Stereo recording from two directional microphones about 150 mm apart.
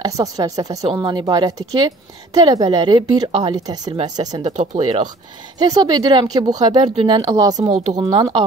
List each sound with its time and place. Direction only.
0.0 s a woman's voice: 25° right (ahead or behind)
4.7 s a woman's voice: 35° right (ahead or behind)